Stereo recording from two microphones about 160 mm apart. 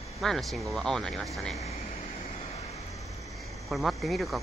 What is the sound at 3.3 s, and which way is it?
Speech, centre (ahead or behind).